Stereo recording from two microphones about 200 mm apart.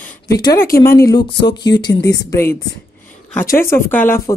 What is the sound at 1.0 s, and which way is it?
Speech, 20° left (ahead or behind).